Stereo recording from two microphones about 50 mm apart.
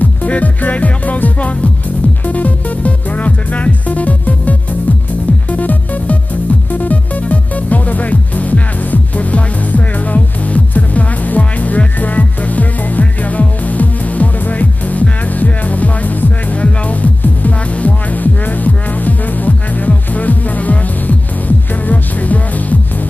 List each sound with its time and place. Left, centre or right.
0.0 s music: left